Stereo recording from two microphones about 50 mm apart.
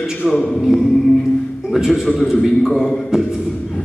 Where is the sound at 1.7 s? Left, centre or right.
Centre.